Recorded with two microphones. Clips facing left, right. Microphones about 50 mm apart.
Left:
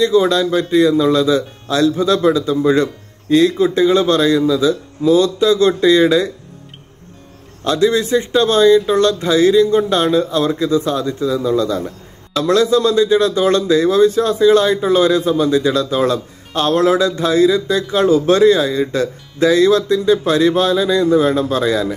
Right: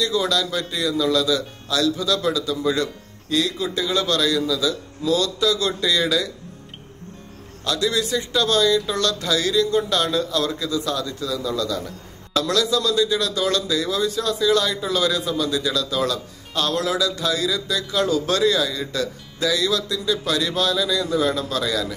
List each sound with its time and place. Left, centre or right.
0.0 s speech: left
7.6 s speech: left